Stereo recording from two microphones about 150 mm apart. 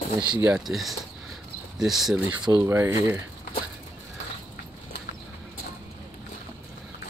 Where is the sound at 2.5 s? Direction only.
20° right (ahead or behind).